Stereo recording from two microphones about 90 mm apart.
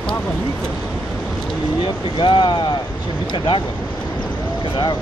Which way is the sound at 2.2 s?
65° left (ahead or behind).